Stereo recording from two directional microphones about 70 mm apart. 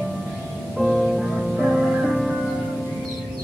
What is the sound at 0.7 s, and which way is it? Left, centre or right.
Music, centre.